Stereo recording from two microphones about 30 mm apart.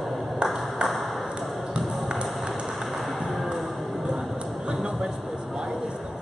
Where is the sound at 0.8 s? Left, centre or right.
Centre.